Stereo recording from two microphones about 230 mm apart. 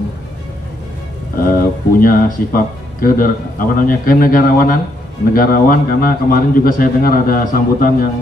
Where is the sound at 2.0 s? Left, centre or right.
Left.